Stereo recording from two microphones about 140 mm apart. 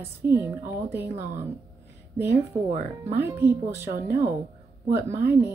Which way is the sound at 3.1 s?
15° right (ahead or behind).